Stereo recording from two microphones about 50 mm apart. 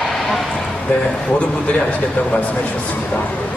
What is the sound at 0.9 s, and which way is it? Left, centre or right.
Speech, left.